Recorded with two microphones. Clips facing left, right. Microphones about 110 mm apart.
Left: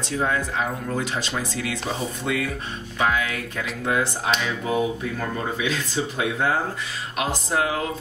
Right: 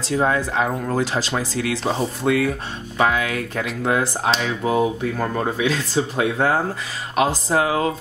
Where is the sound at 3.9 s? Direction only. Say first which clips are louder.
Right 3 dB; 35° right (ahead or behind).